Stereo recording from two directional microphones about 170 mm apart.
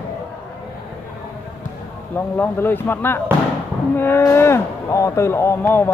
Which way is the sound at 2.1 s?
10° left (ahead or behind).